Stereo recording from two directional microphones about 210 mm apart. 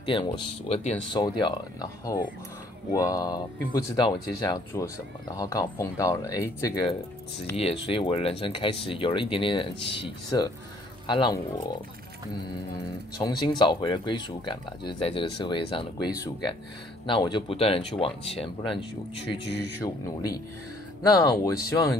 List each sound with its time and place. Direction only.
0.0 s speech: 25° left (ahead or behind)
11.1 s speech: 20° left (ahead or behind)
13.2 s speech: 20° left (ahead or behind)
19.3 s speech: 55° left (ahead or behind)
19.8 s speech: 15° left (ahead or behind)